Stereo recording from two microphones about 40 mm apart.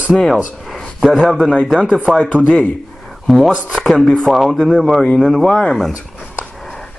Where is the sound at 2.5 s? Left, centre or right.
Left.